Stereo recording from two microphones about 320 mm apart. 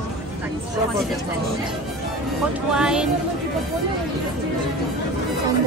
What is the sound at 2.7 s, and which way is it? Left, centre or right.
Speech, centre.